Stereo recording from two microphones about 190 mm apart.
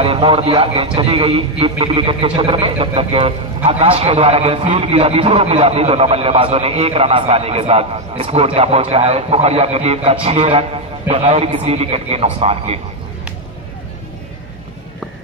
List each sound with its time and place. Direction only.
0.0 s a man's voice: 30° right (ahead or behind)